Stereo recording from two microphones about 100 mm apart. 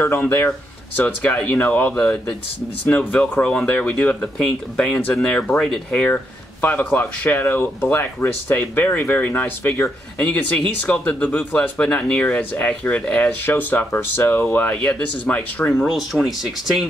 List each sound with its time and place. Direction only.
0.0 s speech: 20° left (ahead or behind)
15.7 s speech: centre (ahead or behind)